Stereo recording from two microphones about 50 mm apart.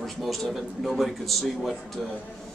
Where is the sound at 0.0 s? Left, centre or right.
Centre.